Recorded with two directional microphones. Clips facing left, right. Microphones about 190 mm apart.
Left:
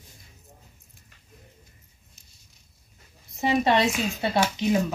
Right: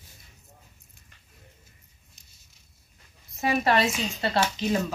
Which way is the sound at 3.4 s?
25° left (ahead or behind).